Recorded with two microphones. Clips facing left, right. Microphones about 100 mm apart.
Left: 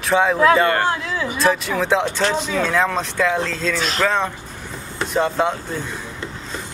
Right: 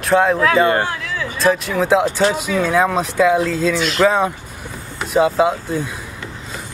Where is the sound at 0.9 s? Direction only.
25° left (ahead or behind).